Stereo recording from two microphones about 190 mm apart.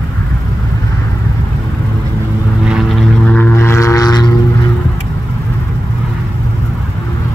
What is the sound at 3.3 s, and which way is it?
Vehicle, 10° left (ahead or behind).